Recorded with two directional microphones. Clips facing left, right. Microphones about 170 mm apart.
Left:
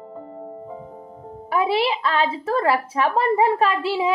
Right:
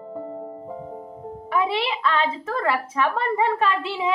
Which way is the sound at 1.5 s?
35° left (ahead or behind).